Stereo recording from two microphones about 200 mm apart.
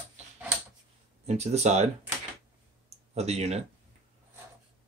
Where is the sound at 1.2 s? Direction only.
35° right (ahead or behind).